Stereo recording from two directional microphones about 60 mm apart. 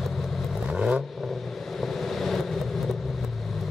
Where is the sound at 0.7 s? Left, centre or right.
Centre.